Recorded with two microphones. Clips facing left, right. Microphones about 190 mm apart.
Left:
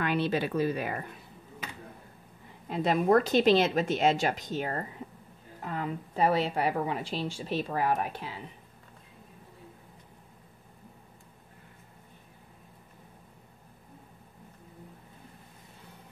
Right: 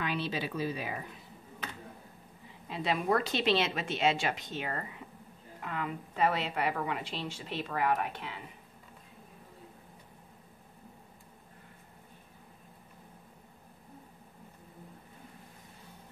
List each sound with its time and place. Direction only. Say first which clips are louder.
0.0 s a woman's voice: left 6 dB; 55° left (ahead or behind)
2.7 s a woman's voice: left 6 dB; 50° left (ahead or behind)